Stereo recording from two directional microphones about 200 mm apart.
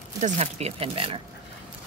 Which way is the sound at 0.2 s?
35° right (ahead or behind).